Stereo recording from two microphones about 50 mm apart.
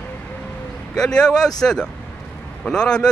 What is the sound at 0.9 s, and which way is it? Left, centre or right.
Speech, centre.